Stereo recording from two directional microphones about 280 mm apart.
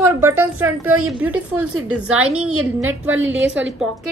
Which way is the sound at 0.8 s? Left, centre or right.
Right.